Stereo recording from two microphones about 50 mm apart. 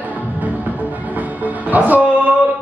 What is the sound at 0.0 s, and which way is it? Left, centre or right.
Music, right.